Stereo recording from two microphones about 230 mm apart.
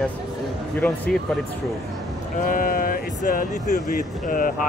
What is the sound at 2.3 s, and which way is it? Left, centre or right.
Speech, left.